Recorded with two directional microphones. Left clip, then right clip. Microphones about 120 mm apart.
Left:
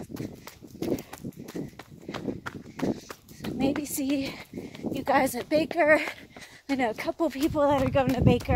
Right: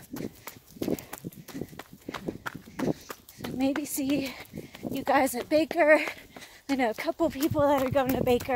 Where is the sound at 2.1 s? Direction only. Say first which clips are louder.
Left 1 dB; 55° right (ahead or behind).